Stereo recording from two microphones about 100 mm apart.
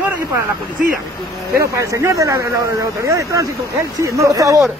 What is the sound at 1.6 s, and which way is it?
Speech, 30° right (ahead or behind).